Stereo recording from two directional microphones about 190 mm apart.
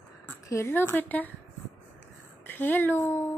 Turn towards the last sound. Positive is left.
turn(degrees=10)  # may be behind; listen again after turning